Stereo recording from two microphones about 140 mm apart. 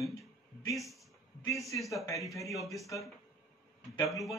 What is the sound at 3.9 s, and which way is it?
Speech, 25° left (ahead or behind).